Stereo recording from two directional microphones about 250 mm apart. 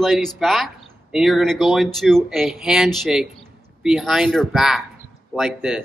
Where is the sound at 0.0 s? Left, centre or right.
Centre.